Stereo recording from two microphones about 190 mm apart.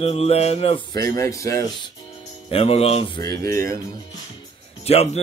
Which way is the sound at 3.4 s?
15° left (ahead or behind).